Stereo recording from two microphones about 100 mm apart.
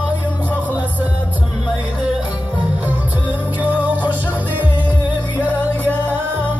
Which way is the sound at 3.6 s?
15° right (ahead or behind).